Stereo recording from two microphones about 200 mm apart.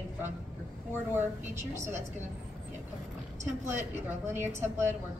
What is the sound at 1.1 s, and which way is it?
Speech, 10° right (ahead or behind).